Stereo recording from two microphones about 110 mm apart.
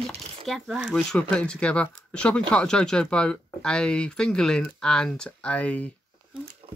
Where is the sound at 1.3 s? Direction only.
10° left (ahead or behind).